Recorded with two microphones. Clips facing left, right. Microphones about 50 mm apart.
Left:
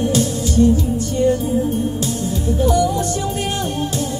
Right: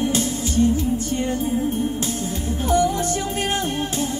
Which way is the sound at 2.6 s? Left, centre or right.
Right.